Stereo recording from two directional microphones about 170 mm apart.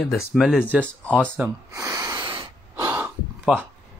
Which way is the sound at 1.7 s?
20° right (ahead or behind).